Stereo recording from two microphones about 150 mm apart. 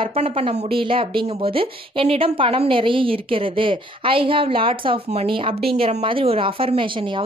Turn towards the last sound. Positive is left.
turn(degrees=-35)  # may be behind; listen again after turning